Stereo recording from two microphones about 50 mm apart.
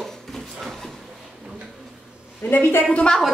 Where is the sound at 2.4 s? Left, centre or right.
Left.